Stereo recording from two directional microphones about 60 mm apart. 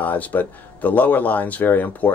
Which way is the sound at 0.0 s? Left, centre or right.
Left.